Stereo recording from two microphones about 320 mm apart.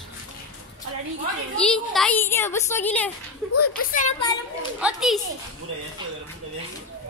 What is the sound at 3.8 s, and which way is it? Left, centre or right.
Speech, left.